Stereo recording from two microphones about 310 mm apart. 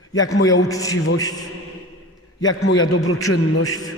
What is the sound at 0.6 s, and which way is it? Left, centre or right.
Speech, centre.